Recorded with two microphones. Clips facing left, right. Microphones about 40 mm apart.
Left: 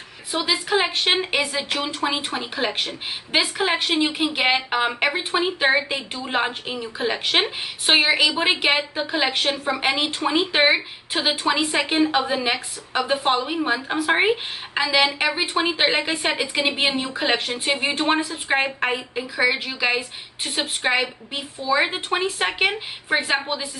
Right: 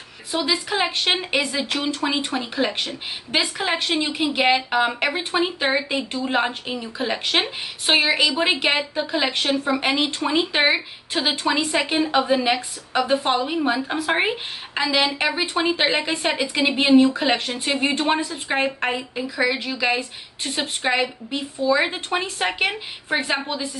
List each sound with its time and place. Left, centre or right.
0.3 s speech: centre